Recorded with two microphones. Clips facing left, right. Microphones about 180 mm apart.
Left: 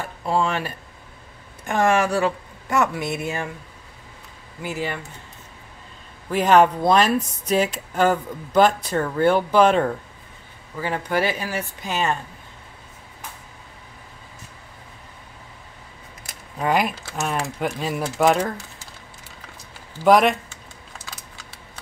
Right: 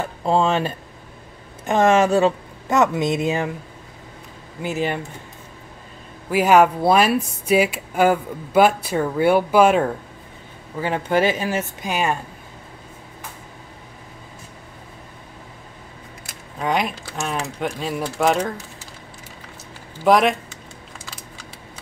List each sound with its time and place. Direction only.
0.0 s speech: 25° right (ahead or behind)
4.6 s speech: 20° right (ahead or behind)
6.3 s speech: 10° right (ahead or behind)
10.8 s speech: 20° right (ahead or behind)
16.5 s speech: 5° left (ahead or behind)
20.0 s speech: centre (ahead or behind)